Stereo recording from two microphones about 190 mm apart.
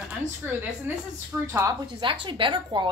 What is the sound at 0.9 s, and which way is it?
A woman's voice, 10° right (ahead or behind).